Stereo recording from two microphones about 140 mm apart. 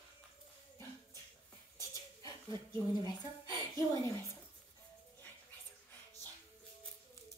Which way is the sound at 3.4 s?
25° left (ahead or behind).